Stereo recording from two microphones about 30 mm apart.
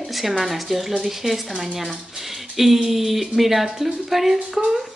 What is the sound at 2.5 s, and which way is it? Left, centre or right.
Speech, centre.